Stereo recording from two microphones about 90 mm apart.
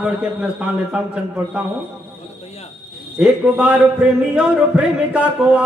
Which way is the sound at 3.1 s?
15° right (ahead or behind).